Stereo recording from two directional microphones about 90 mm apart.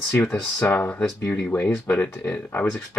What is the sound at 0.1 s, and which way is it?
Speech, 25° left (ahead or behind).